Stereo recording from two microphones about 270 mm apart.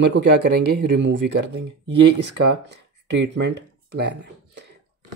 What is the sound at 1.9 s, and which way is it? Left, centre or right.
Speech, right.